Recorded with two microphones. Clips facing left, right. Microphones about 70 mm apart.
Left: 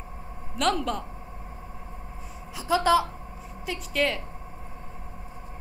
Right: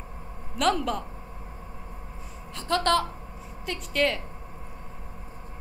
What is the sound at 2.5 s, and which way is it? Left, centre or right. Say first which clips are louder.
A woman's voice: left 2 dB; centre.